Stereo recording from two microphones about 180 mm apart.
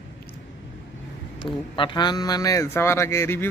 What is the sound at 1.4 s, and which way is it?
Speech, 25° left (ahead or behind).